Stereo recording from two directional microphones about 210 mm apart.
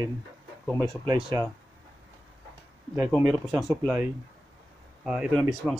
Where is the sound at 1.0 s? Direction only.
25° right (ahead or behind).